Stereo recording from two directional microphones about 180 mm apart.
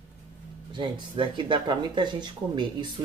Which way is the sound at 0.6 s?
25° right (ahead or behind).